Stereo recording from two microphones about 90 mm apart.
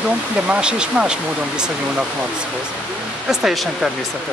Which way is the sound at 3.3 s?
5° right (ahead or behind).